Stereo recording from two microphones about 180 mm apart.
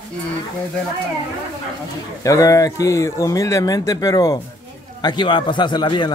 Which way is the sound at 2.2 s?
20° left (ahead or behind).